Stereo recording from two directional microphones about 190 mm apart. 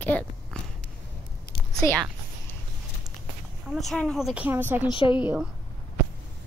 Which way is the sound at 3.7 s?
Centre (ahead or behind).